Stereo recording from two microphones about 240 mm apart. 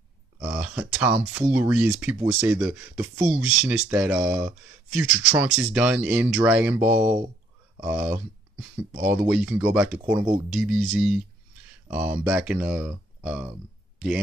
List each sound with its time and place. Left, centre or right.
0.6 s speech: centre
6.8 s speech: right
7.8 s speech: centre
10.5 s speech: centre
12.3 s speech: centre